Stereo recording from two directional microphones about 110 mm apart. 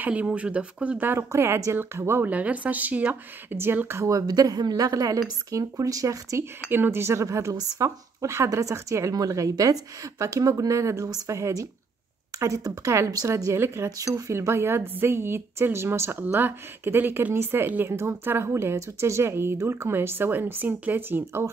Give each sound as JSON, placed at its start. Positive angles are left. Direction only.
{"t": 0.0, "sound": "a woman's voice", "side_deg": -10}